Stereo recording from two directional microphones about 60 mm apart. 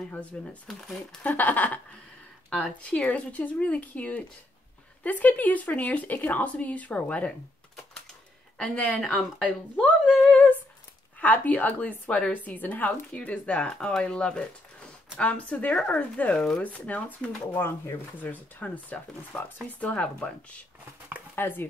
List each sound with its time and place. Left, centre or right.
0.1 s speech: left
0.7 s speech: centre
1.2 s speech: left
8.5 s speech: left
9.4 s a sound: centre
11.1 s speech: left
16.6 s speech: left
17.6 s speech: left
18.2 s speech: left
21.4 s speech: left